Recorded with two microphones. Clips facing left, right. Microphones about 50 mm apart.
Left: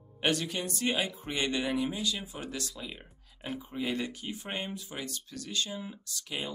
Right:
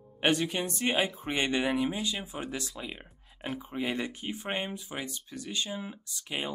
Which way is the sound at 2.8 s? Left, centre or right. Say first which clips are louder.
Right 2 dB; centre.